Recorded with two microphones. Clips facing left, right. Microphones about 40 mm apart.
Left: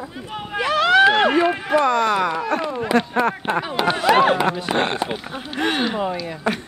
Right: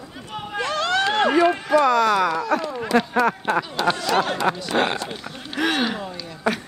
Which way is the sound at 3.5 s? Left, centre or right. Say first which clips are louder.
Left 1 dB; left.